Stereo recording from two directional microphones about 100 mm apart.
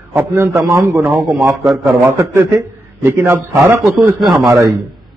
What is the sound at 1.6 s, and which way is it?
Speech, centre (ahead or behind).